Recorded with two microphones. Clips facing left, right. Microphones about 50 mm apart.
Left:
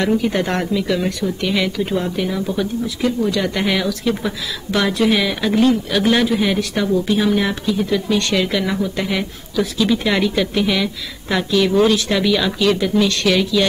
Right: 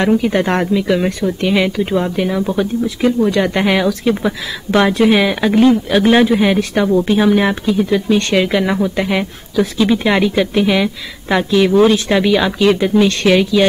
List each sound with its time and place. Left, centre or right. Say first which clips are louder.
0.0 s speech: right 4 dB; right